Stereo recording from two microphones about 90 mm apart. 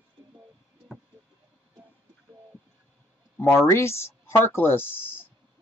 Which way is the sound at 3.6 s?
30° left (ahead or behind).